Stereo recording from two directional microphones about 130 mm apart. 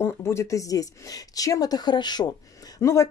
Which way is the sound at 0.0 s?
20° left (ahead or behind).